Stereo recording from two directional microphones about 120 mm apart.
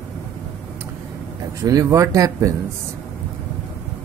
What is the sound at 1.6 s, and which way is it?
Speech, 25° right (ahead or behind).